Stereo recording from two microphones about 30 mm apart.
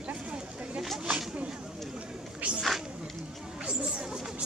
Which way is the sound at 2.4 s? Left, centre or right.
Right.